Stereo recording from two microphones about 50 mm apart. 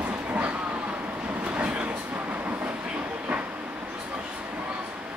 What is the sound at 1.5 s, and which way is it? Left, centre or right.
Train, right.